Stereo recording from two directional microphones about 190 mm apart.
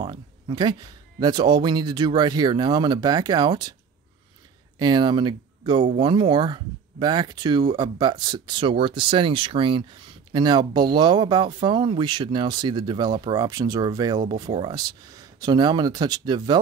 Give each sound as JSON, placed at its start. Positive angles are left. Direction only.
{"t": 0.0, "sound": "speech", "side_deg": -25}
{"t": 4.7, "sound": "speech", "side_deg": -20}